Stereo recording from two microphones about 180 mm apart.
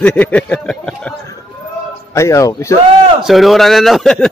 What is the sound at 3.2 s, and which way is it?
Speech, centre (ahead or behind).